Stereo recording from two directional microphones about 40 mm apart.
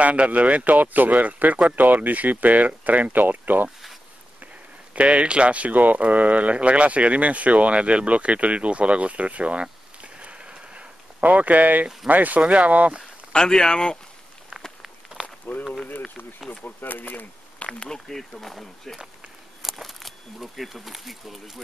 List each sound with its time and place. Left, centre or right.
0.0 s speech: right
4.9 s speech: right
13.3 s speech: centre
15.2 s a sound: centre
16.4 s speech: left
17.7 s speech: centre